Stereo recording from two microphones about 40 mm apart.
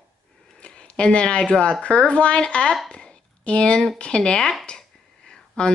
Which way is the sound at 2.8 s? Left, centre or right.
Left.